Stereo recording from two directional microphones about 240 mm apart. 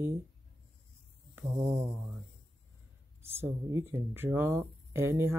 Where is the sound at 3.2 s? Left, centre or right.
Centre.